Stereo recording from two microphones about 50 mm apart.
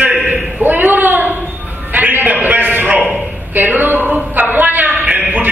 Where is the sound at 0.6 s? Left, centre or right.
Right.